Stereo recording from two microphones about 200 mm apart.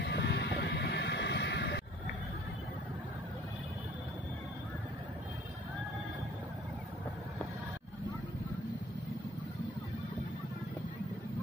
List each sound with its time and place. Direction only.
0.0 s music: 60° left (ahead or behind)